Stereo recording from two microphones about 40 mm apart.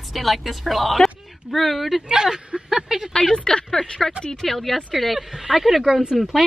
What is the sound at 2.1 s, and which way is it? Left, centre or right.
Speech, centre.